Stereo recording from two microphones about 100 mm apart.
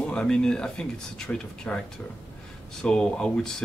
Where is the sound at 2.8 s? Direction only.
10° left (ahead or behind).